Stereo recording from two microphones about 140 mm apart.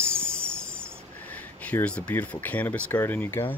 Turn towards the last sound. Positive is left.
turn(degrees=15)  # may be behind; listen again after turning